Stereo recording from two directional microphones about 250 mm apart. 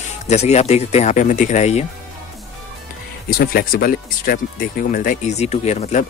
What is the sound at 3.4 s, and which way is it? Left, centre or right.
Speech, left.